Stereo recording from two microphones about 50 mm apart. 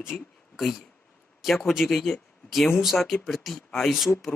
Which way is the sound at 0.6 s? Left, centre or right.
Centre.